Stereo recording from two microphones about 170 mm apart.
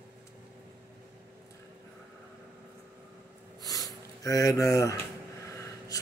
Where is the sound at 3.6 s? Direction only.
20° left (ahead or behind).